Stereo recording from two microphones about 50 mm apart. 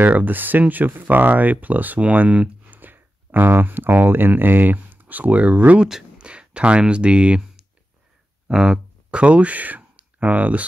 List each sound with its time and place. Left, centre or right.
0.0 s speech: right
2.8 s speech: right